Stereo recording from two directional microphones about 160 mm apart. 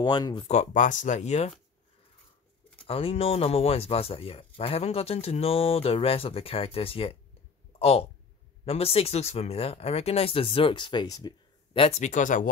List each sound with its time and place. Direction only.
0.0 s speech: 25° left (ahead or behind)
0.5 s speech: 50° left (ahead or behind)
2.9 s speech: 35° left (ahead or behind)
12.0 s speech: 50° left (ahead or behind)